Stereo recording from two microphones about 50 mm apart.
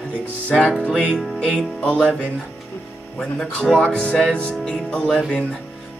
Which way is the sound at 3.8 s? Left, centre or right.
Left.